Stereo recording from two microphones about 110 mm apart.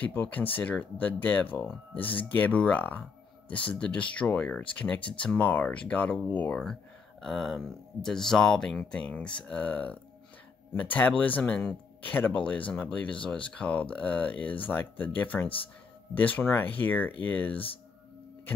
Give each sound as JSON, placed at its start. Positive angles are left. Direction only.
{"t": 0.0, "sound": "speech", "side_deg": 15}
{"t": 6.6, "sound": "speech", "side_deg": 5}